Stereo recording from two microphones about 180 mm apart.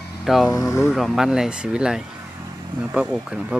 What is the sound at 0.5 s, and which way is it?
Speech, 15° left (ahead or behind).